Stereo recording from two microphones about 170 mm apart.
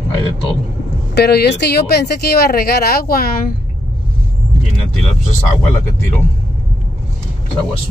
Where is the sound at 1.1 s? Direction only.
75° left (ahead or behind); by 3.5 s 60° left (ahead or behind).